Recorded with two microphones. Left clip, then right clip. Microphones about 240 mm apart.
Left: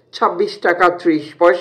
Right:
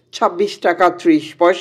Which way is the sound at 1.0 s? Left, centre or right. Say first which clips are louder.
Right 2 dB; right.